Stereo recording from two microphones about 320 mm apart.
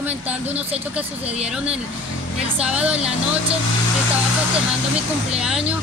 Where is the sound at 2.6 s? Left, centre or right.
Centre.